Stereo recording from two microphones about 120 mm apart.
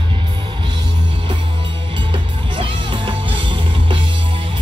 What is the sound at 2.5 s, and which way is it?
Music, 45° right (ahead or behind).